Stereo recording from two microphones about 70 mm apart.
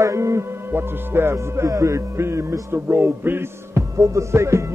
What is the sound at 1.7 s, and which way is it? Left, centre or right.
Music, right.